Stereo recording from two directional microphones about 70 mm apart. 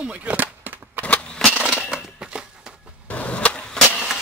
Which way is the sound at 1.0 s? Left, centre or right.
Centre.